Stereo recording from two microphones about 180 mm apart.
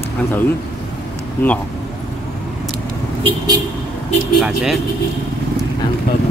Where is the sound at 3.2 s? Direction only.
20° right (ahead or behind).